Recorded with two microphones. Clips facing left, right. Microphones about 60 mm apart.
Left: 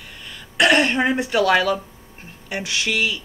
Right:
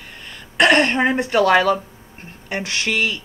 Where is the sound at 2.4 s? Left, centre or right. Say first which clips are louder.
Right 1 dB; right.